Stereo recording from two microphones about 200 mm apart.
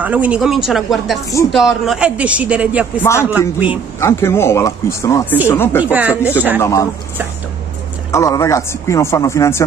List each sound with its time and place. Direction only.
0.0 s speech: 5° right (ahead or behind)
3.0 s a man's voice: 15° left (ahead or behind)
3.3 s speech: 5° right (ahead or behind)
4.0 s a man's voice: 15° left (ahead or behind)
5.8 s speech: 10° right (ahead or behind)
6.6 s a man's voice: 15° left (ahead or behind)
8.1 s a man's voice: 15° left (ahead or behind)